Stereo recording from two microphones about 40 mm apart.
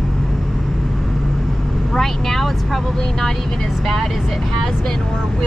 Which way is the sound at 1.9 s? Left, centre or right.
Centre.